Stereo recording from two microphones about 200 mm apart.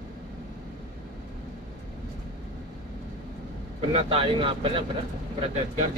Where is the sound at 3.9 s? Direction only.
30° right (ahead or behind).